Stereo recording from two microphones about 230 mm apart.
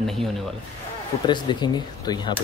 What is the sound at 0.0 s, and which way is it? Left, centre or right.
Speech, centre.